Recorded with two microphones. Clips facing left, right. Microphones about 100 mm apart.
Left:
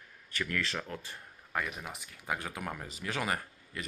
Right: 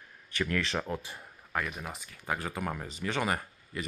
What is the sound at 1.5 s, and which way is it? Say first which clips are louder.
Speech: right 2 dB; centre (ahead or behind).